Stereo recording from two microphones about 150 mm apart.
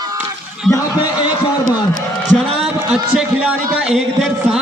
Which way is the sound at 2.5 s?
5° right (ahead or behind).